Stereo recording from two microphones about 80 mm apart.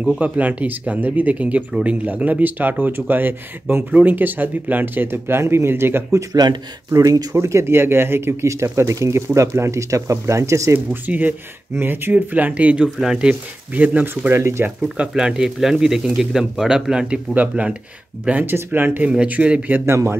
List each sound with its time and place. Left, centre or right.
0.2 s speech: centre
6.3 s speech: right
6.9 s speech: right
11.1 s speech: right
13.3 s speech: centre
14.3 s speech: right
15.0 s speech: centre
17.3 s speech: centre
19.9 s speech: right